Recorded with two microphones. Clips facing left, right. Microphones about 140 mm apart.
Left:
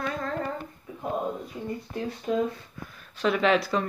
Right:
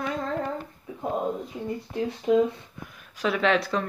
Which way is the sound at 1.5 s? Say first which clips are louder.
Right 3 dB; 15° right (ahead or behind).